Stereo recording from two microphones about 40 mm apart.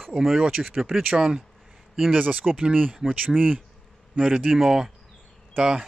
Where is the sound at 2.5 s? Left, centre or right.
Right.